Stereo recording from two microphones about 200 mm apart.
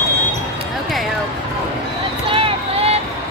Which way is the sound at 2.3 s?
30° right (ahead or behind).